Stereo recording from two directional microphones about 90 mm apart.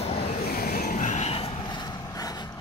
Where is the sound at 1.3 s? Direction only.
90° left; by 2.0 s 55° left (ahead or behind).